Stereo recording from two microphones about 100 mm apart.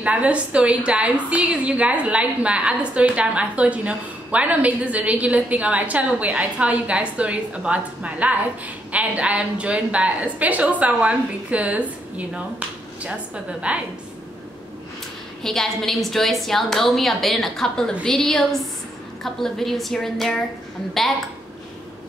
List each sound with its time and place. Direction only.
0.0 s a woman's voice: 10° right (ahead or behind)
15.4 s a woman's voice: 5° left (ahead or behind)